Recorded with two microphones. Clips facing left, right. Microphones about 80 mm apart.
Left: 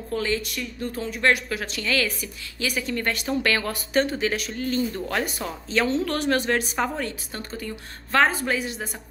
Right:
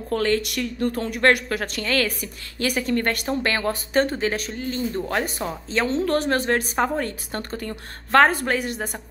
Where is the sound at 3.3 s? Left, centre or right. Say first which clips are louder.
Right 1 dB; right.